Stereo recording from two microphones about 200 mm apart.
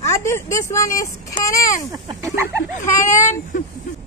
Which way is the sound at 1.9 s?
15° right (ahead or behind).